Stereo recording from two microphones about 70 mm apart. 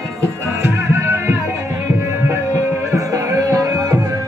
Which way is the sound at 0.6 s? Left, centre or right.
Right.